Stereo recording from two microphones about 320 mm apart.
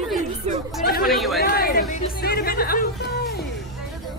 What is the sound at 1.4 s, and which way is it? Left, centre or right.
Chatter, left.